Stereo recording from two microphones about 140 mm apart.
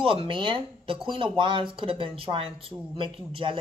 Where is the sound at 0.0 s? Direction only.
40° right (ahead or behind).